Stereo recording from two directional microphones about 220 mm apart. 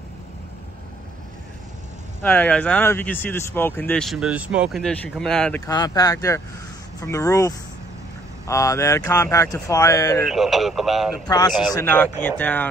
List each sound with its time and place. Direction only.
2.2 s speech: 5° left (ahead or behind)
5.7 s speech: 15° left (ahead or behind)
10.2 s speech: centre (ahead or behind)
11.2 s speech: 15° left (ahead or behind)